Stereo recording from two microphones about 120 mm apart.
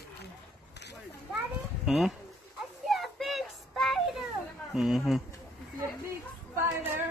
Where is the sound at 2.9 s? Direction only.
Centre (ahead or behind).